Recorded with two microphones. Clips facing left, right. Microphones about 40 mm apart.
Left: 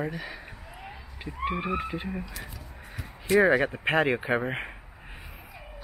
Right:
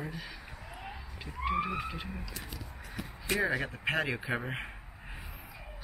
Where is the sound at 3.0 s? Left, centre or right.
Left.